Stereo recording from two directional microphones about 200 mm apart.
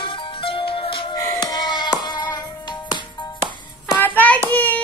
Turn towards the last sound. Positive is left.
turn(degrees=10)  # may be behind; listen again after turning